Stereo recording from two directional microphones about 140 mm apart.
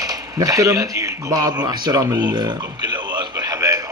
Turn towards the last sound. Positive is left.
turn(degrees=-25)  # may be behind; listen again after turning